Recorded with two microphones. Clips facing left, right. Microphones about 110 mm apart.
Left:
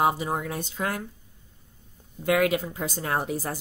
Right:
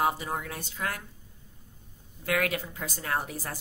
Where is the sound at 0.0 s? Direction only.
20° left (ahead or behind).